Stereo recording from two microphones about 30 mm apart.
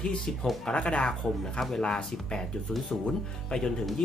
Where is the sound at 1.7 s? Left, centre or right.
Left.